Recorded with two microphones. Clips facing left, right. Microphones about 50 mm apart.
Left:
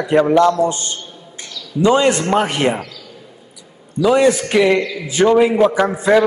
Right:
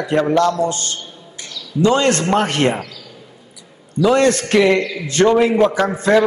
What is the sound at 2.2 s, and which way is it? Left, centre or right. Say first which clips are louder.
Speech: even; centre.